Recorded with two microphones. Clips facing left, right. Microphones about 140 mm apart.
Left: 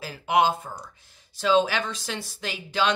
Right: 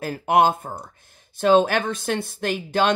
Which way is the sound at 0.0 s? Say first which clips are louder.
Right 4 dB; 50° right (ahead or behind).